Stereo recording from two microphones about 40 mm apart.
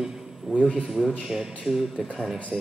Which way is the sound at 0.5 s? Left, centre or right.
Left.